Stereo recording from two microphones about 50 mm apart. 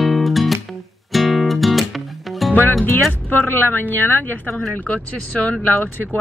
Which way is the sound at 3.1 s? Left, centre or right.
Left.